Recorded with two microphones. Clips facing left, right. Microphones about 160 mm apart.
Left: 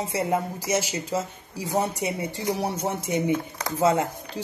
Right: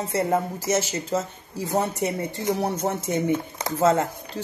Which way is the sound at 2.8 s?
10° left (ahead or behind).